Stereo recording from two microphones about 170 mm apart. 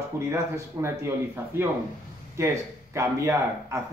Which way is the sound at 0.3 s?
15° right (ahead or behind).